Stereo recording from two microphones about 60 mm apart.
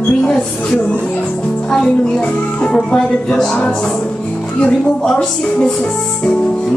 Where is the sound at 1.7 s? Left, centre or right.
Centre.